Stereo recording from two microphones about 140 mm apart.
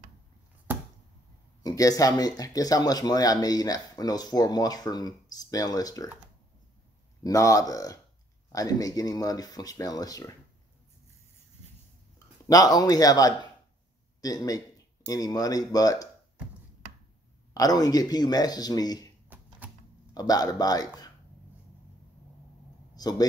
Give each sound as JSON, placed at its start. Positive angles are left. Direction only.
{"t": 1.6, "sound": "speech", "side_deg": 25}
{"t": 7.2, "sound": "speech", "side_deg": 25}
{"t": 12.4, "sound": "speech", "side_deg": 25}
{"t": 17.6, "sound": "speech", "side_deg": 25}
{"t": 19.2, "sound": "a sound", "side_deg": -10}
{"t": 20.2, "sound": "speech", "side_deg": 25}
{"t": 22.9, "sound": "a sound", "side_deg": 25}